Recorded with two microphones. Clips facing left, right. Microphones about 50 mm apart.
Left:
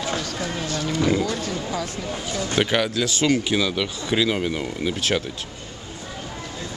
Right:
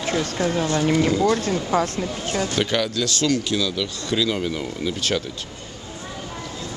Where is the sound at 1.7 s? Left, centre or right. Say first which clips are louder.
Right 10 dB; right.